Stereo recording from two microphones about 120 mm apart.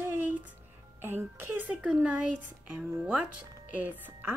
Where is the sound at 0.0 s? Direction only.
20° right (ahead or behind).